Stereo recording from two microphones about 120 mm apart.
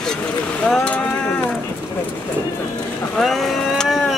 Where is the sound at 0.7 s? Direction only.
10° left (ahead or behind).